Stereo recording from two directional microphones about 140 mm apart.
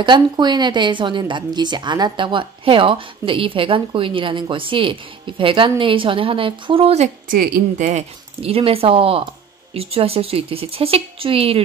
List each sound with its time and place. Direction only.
0.0 s a woman's voice: 30° right (ahead or behind)
7.2 s speech: 80° right; by 11.6 s 45° right (ahead or behind)